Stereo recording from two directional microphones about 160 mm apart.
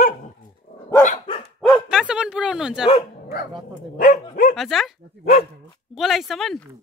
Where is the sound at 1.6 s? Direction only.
Centre (ahead or behind).